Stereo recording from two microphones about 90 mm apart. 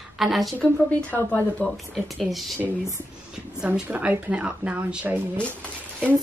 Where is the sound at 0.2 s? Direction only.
Centre (ahead or behind).